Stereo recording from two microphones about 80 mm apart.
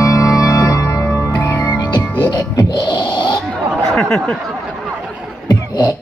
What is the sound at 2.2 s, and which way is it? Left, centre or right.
Music, left.